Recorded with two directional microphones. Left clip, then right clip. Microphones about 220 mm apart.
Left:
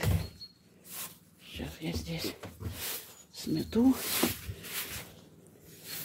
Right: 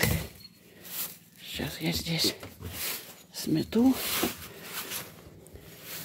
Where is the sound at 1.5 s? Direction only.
20° right (ahead or behind).